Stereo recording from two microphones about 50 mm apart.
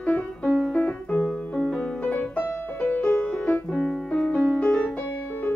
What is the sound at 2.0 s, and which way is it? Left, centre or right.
Music, left.